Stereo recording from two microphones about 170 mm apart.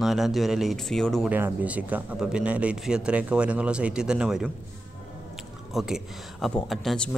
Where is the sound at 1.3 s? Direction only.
10° right (ahead or behind).